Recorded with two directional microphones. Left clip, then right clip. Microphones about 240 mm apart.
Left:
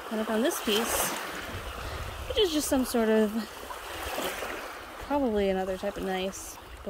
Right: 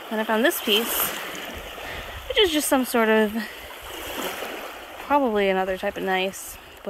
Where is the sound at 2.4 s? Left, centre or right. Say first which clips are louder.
Right 6 dB; centre.